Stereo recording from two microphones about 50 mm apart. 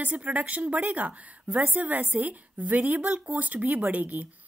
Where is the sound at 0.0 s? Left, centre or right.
Right.